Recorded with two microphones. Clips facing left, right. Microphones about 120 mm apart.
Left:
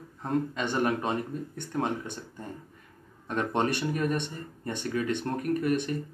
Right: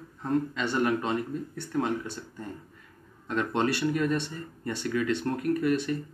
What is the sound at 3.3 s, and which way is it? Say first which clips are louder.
Speech: right 1 dB; 20° left (ahead or behind).